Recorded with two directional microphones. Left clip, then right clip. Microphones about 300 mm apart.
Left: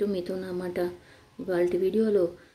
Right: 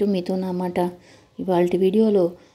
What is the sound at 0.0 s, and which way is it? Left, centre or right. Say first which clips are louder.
Speech: right 6 dB; centre.